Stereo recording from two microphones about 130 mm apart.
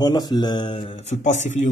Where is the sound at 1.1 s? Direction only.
65° left (ahead or behind).